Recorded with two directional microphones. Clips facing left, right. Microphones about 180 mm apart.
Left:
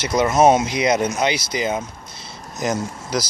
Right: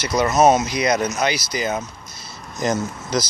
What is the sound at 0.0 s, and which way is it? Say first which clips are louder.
Speech: left 1 dB; 25° left (ahead or behind).